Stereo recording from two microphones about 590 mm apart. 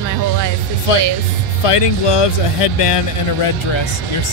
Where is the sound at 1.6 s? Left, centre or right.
Left.